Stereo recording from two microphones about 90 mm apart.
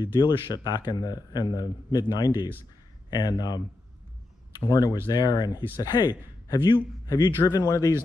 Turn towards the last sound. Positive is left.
turn(degrees=40)  # may be behind; listen again after turning